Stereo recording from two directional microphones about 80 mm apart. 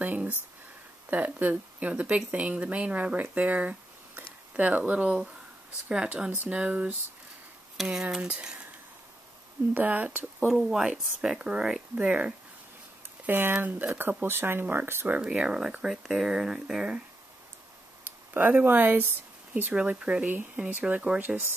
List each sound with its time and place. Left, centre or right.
0.0 s a sound: right
1.1 s speech: centre
7.7 s speech: centre
9.8 s speech: right
10.5 s speech: centre; by 15.2 s right
15.2 s speech: centre
18.0 s speech: right
19.7 s speech: centre